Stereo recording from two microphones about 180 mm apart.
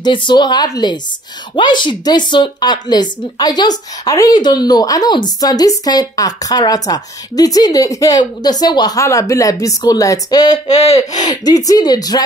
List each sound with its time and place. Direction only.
0.0 s a woman's voice: 25° left (ahead or behind)
10.7 s speech: 35° left (ahead or behind)
11.1 s a woman's voice: 20° left (ahead or behind)